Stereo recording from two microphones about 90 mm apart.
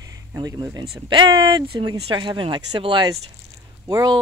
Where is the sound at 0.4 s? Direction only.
50° right (ahead or behind).